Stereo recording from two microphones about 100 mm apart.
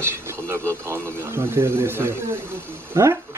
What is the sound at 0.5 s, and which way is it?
Speech, 25° right (ahead or behind).